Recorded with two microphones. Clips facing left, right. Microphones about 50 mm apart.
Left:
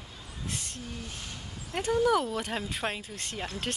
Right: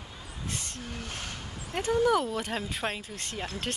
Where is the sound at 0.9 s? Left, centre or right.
Right.